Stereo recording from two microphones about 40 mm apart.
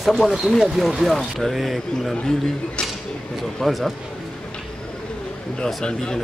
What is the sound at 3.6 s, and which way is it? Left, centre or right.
Speech, centre.